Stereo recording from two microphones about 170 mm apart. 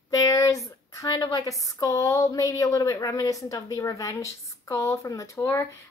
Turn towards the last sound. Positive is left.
turn(degrees=15)  # may be behind; listen again after turning